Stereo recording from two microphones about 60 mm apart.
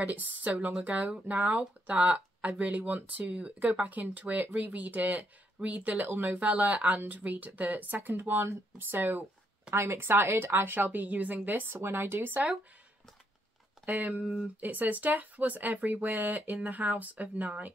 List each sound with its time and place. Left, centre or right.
0.0 s speech: right
14.2 s speech: centre
14.6 s speech: right